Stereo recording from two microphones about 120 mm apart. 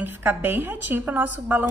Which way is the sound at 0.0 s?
15° right (ahead or behind).